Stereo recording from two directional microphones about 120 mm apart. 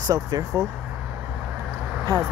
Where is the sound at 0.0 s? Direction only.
30° right (ahead or behind).